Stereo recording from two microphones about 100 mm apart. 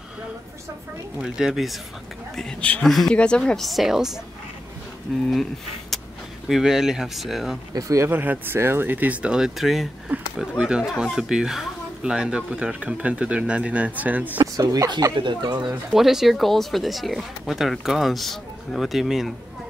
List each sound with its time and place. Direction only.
1.2 s speech: 5° right (ahead or behind)
2.3 s a man's voice: 10° left (ahead or behind)
5.3 s speech: centre (ahead or behind)
7.7 s speech: 30° right (ahead or behind)
8.1 s speech: 20° right (ahead or behind)
14.4 s speech: 35° right (ahead or behind)
15.9 s speech: 5° right (ahead or behind)